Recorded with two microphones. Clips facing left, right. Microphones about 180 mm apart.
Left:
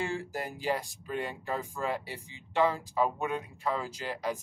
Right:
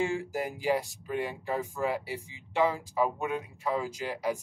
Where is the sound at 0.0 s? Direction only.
10° right (ahead or behind).